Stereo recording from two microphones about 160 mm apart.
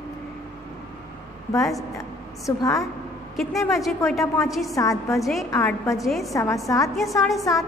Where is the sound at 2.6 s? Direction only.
20° left (ahead or behind).